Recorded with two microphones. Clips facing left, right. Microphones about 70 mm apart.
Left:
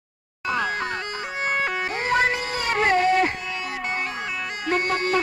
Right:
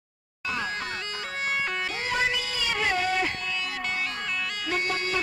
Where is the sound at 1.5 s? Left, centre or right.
Left.